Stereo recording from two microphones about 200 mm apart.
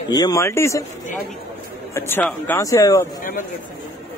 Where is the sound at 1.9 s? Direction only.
10° left (ahead or behind).